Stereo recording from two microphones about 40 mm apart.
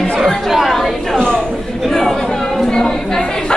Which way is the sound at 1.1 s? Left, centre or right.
Centre.